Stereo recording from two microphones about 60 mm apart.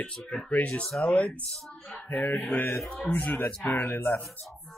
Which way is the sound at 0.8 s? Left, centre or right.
Centre.